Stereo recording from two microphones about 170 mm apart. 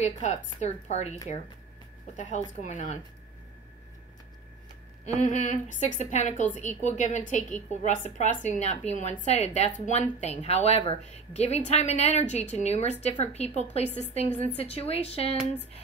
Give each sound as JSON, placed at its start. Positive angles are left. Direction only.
{"t": 0.0, "sound": "a woman's voice", "side_deg": 40}
{"t": 2.6, "sound": "a woman's voice", "side_deg": 45}
{"t": 5.0, "sound": "a woman's voice", "side_deg": 45}